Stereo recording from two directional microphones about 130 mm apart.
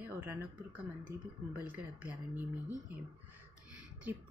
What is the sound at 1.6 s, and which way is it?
Speech, 10° right (ahead or behind).